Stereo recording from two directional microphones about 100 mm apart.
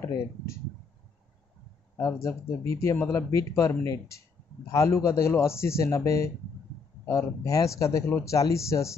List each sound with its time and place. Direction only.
2.0 s a man's voice: 30° left (ahead or behind)